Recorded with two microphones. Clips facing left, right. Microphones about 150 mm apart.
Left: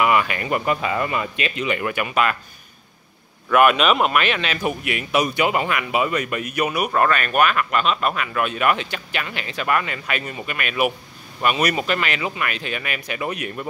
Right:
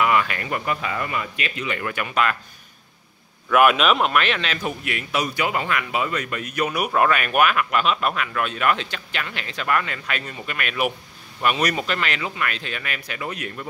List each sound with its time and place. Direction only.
0.0 s speech: 10° left (ahead or behind)
0.7 s speech: 25° left (ahead or behind); by 2.3 s 5° left (ahead or behind)
3.4 s a man's voice: centre (ahead or behind)
6.8 s a man's voice: 5° right (ahead or behind); by 13.7 s 15° left (ahead or behind)